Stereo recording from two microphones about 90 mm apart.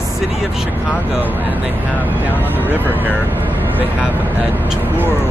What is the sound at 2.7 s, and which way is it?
Speech, 20° right (ahead or behind).